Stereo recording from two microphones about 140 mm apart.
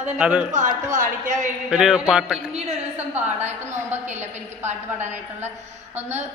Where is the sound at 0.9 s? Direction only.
70° right (ahead or behind).